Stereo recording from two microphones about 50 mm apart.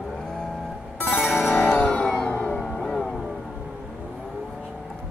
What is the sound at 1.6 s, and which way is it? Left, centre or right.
Music, left.